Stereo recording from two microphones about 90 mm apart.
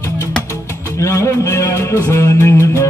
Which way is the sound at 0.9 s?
35° left (ahead or behind).